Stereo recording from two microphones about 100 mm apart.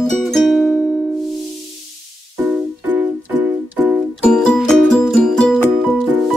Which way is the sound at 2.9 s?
15° right (ahead or behind).